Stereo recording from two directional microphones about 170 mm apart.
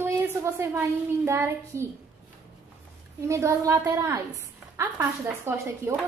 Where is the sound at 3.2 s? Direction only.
20° right (ahead or behind).